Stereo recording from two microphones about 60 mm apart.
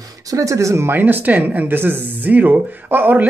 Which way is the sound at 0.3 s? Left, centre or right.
Right.